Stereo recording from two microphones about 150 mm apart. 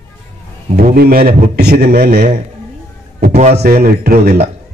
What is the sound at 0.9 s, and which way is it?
A man's voice, 90° right.